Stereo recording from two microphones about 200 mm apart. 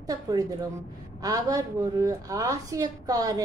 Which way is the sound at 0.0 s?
20° right (ahead or behind).